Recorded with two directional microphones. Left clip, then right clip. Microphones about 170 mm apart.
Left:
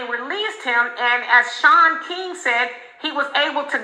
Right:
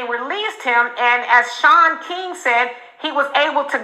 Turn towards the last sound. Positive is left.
turn(degrees=-30)  # may be behind; listen again after turning